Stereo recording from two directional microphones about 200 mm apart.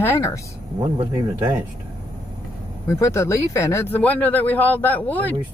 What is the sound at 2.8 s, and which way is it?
A man's voice, 15° left (ahead or behind).